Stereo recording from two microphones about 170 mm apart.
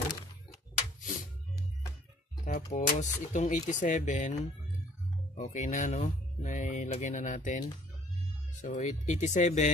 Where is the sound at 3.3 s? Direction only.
50° left (ahead or behind).